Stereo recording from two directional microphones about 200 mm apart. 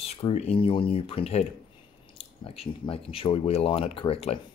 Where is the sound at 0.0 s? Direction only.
30° left (ahead or behind).